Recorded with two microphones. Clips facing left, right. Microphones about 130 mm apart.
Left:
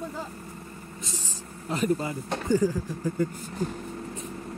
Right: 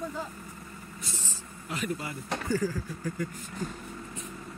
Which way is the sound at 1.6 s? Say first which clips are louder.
Left 7 dB; 35° left (ahead or behind).